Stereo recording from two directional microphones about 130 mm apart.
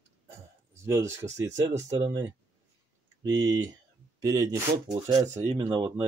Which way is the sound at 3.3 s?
30° right (ahead or behind).